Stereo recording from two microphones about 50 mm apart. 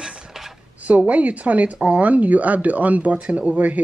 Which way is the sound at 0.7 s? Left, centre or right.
Right.